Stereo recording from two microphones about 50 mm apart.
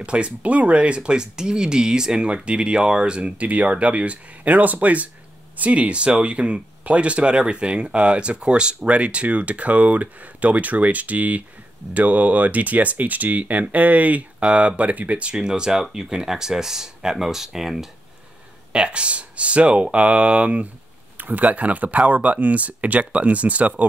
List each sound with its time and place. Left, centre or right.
0.0 s speech: right; by 17.8 s centre
18.7 s speech: right